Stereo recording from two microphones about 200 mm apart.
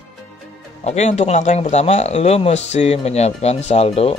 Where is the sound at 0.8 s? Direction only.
35° left (ahead or behind).